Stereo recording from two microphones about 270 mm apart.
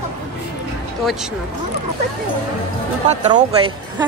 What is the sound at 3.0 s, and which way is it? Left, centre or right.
A woman's voice, right.